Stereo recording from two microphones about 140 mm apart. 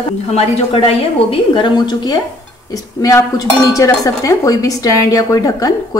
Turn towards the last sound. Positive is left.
turn(degrees=25)  # may be behind; listen again after turning